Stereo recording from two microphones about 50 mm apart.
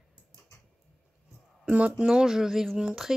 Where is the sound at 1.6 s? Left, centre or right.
Right.